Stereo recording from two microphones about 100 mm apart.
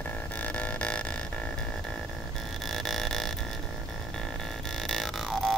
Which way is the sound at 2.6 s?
5° left (ahead or behind).